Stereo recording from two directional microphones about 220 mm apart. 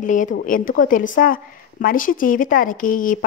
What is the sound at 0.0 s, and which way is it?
A woman's voice, 35° left (ahead or behind).